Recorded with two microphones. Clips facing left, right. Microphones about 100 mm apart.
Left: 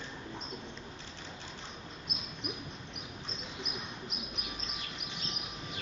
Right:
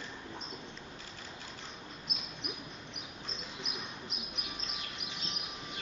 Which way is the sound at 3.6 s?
Centre (ahead or behind).